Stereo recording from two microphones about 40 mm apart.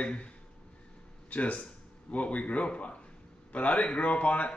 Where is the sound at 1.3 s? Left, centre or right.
Left.